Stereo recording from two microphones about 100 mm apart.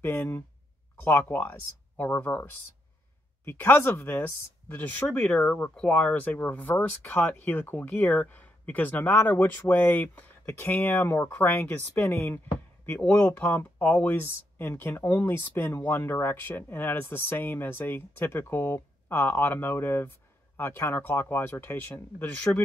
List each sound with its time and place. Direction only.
0.0 s speech: 25° left (ahead or behind)
3.4 s speech: 20° left (ahead or behind)
5.4 s speech: 10° left (ahead or behind)
12.8 s speech: 15° left (ahead or behind)